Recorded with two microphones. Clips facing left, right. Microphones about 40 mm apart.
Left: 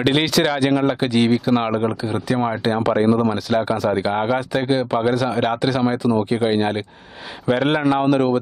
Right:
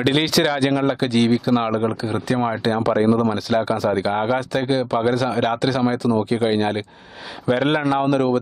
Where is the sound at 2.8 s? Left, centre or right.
Left.